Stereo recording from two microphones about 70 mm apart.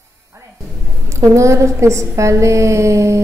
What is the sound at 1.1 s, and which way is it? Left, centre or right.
A woman's voice, right.